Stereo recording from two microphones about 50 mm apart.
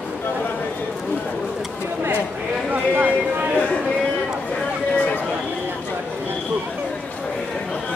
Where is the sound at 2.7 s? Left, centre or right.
Right.